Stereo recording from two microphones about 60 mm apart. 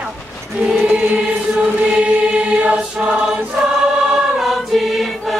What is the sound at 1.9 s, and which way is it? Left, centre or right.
Choir, centre.